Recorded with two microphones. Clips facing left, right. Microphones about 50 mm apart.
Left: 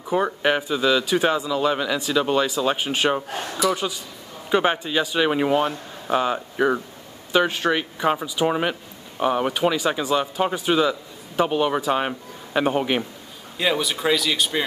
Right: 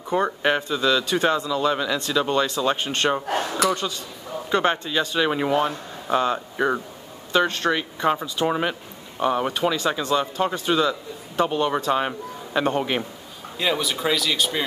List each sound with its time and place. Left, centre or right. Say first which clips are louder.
0.1 s speech: left 1 dB; centre
3.3 s a man's voice: right 1 dB; right
3.7 s speech: left 1 dB; centre